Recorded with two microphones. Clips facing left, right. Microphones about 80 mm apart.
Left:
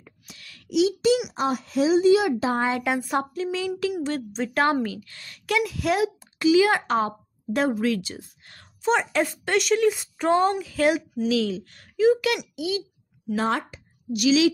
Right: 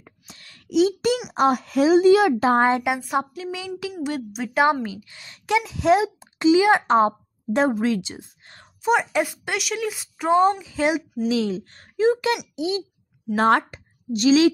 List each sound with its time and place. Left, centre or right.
0.0 s a sound: right
1.3 s a woman's voice: right
3.0 s speech: centre
3.5 s a woman's voice: centre
8.8 s a woman's voice: centre
10.3 s a woman's voice: centre
11.2 s speech: right
13.4 s a woman's voice: right
14.1 s speech: right